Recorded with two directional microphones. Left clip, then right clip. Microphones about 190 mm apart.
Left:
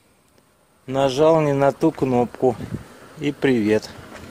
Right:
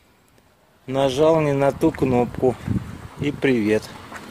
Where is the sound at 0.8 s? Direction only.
10° left (ahead or behind).